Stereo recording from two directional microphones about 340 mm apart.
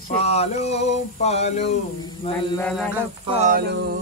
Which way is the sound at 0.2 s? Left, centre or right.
Centre.